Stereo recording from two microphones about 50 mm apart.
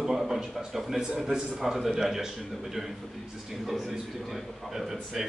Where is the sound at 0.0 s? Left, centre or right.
Centre.